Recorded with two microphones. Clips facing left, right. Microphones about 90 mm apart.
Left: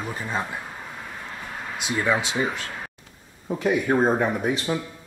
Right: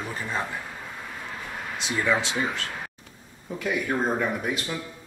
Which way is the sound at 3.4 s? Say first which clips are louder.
Left 5 dB; 30° left (ahead or behind).